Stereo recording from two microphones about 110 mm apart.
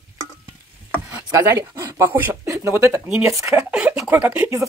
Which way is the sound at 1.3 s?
30° right (ahead or behind).